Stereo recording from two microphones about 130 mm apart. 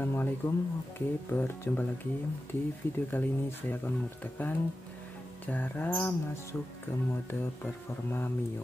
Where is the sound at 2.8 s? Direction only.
15° left (ahead or behind).